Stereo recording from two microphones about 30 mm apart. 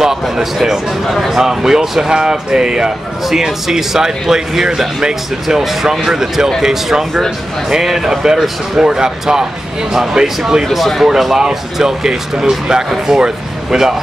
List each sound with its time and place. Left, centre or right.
0.0 s speech: centre
1.0 s speech: centre
1.3 s speech: centre
3.3 s speech: centre
10.8 s speech: centre
11.3 s speech: centre